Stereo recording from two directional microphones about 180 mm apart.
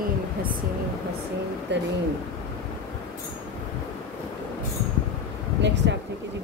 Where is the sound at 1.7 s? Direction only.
75° right (ahead or behind).